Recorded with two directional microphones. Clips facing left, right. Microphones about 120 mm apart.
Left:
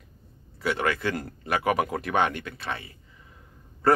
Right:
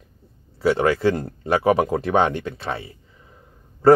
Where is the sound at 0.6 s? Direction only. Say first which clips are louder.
Right 8 dB; 30° right (ahead or behind).